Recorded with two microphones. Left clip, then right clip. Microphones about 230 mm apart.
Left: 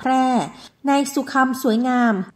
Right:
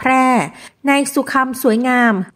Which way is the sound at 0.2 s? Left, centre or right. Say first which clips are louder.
Right 5 dB; right.